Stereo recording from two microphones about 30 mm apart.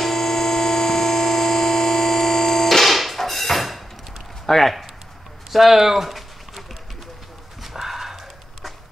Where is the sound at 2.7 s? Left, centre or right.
Centre.